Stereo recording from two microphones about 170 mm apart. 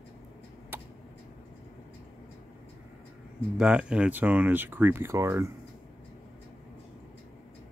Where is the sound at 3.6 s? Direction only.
5° right (ahead or behind).